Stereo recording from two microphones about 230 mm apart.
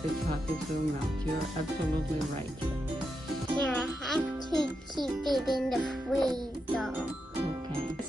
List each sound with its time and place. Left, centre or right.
3.5 s a child's voice: centre
6.3 s music: centre